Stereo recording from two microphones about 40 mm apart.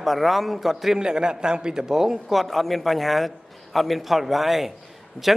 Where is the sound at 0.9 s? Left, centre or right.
Centre.